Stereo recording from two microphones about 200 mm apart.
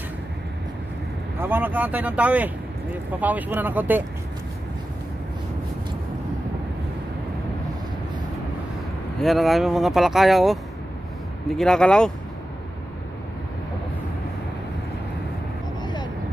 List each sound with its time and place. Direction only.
1.4 s speech: 10° right (ahead or behind)
9.2 s speech: centre (ahead or behind)
15.8 s vehicle: 20° left (ahead or behind)